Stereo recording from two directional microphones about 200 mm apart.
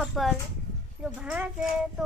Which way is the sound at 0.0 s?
Centre (ahead or behind).